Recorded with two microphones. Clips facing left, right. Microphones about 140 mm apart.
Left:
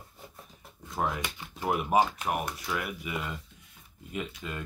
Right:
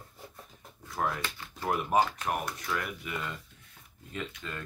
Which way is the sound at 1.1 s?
15° left (ahead or behind).